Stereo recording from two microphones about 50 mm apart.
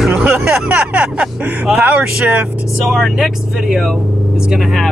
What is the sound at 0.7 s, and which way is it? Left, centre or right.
Vehicle, right.